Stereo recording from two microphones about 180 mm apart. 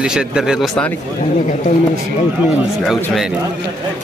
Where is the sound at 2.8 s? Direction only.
Centre (ahead or behind).